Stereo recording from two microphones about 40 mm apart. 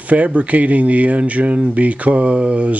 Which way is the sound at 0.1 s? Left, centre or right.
Right.